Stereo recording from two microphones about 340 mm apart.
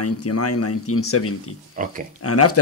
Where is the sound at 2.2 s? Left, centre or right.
Left.